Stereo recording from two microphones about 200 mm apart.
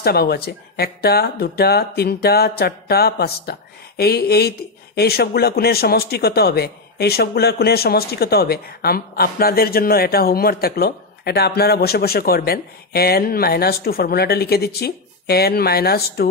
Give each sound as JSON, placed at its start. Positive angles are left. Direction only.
{"t": 0.0, "sound": "speech", "side_deg": 50}